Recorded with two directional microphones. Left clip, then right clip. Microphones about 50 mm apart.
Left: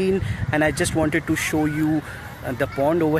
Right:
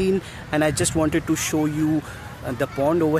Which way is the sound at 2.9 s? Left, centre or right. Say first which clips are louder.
Even; centre.